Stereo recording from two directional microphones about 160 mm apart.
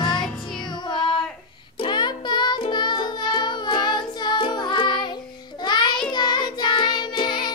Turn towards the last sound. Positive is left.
turn(degrees=30)  # may be behind; listen again after turning